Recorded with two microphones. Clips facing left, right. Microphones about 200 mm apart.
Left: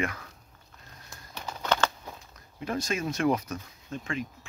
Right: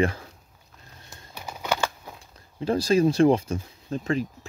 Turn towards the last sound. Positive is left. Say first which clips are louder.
# right 8 dB
turn(degrees=-35)  # may be behind; listen again after turning